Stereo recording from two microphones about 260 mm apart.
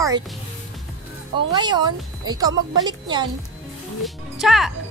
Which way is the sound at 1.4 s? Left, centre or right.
Centre.